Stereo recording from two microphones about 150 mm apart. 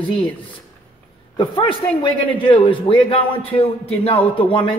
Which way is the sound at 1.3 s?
35° left (ahead or behind).